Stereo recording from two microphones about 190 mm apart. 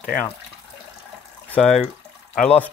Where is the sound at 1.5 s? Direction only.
Centre (ahead or behind).